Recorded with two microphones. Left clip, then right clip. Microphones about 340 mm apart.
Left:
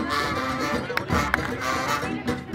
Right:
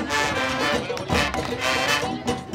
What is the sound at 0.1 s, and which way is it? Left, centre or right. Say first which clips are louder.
Music: right 4 dB; right.